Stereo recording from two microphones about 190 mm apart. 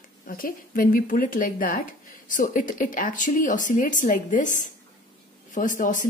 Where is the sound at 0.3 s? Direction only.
50° left (ahead or behind).